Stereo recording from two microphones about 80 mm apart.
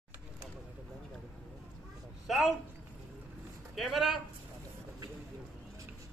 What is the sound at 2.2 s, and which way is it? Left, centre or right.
Speech, centre.